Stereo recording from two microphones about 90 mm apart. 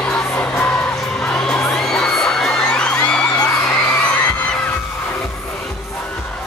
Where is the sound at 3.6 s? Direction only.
10° left (ahead or behind).